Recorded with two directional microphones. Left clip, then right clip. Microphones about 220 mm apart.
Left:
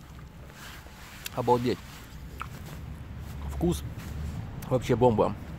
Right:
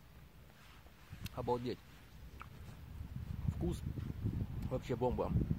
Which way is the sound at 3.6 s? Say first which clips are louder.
Left 14 dB; centre (ahead or behind).